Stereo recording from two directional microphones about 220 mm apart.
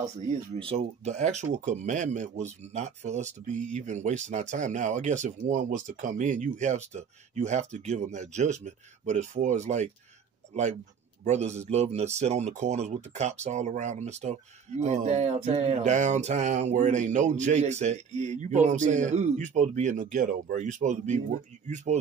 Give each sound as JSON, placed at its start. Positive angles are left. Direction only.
{"t": 0.5, "sound": "speech", "side_deg": -25}
{"t": 11.2, "sound": "speech", "side_deg": -30}